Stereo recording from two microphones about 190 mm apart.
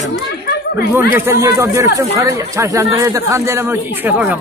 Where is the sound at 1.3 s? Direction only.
15° right (ahead or behind).